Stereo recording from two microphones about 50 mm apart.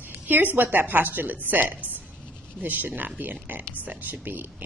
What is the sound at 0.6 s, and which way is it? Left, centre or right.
A woman's voice, right.